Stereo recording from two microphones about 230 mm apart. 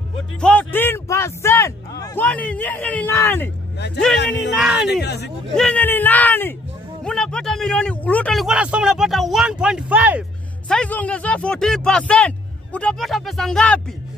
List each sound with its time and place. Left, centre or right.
0.4 s a man's voice: centre
4.3 s speech: centre
5.0 s speech: left
5.6 s a man's voice: centre
10.7 s speech: centre